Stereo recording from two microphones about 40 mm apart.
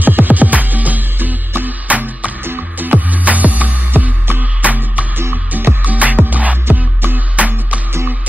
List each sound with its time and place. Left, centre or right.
0.0 s music: right
3.9 s music: right
4.4 s music: right